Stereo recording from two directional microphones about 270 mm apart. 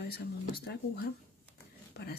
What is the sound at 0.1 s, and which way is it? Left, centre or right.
Speech, left.